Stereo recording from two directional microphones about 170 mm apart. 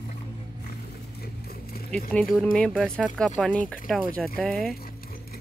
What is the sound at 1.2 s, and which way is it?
Clip-clop, 60° left (ahead or behind).